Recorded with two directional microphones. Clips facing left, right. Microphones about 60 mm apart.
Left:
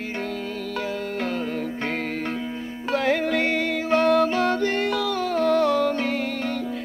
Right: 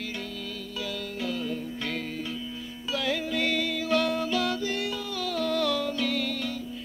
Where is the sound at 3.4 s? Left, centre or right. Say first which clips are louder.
Left 5 dB; left.